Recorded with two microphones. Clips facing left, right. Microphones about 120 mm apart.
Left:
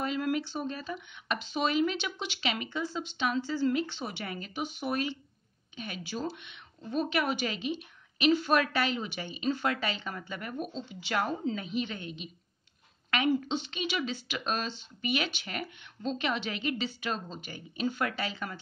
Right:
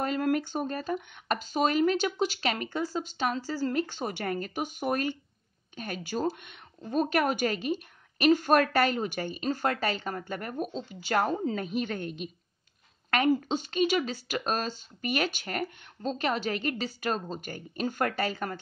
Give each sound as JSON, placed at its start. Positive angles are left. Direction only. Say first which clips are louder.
{"t": 0.0, "sound": "speech", "louder": "right 3 dB", "side_deg": -45}